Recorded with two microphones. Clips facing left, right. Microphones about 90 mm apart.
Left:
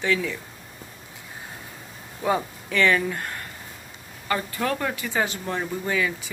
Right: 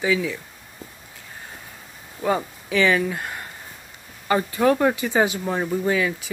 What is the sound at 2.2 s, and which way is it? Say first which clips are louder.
Speech: right 1 dB; centre (ahead or behind).